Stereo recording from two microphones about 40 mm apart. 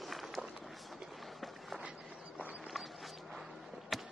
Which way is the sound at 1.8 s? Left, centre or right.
Right.